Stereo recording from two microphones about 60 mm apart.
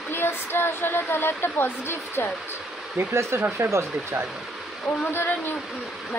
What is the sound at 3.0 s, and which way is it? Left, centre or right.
Speech, right.